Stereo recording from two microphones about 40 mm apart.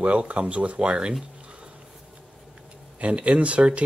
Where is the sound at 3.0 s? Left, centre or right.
Right.